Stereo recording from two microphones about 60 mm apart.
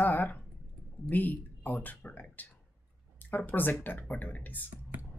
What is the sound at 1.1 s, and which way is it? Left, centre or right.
Speech, left.